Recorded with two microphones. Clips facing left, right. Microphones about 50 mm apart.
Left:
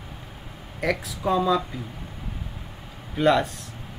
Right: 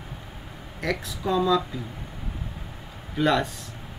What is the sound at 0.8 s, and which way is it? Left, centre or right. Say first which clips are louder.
Speech: left 3 dB; centre.